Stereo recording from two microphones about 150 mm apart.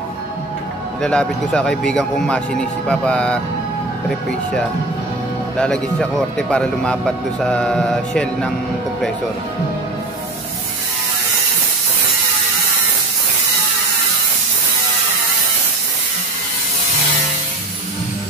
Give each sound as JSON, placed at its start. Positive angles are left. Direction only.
{"t": 1.0, "sound": "speech", "side_deg": 5}
{"t": 5.6, "sound": "speech", "side_deg": 5}